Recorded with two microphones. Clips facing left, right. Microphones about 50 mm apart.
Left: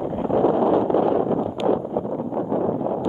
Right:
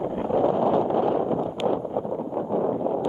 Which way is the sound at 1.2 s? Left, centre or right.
Centre.